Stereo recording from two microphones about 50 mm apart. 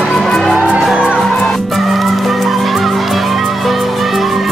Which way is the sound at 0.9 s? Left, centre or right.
Right.